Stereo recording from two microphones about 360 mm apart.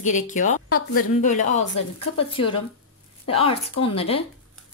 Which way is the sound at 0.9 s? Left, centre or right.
Left.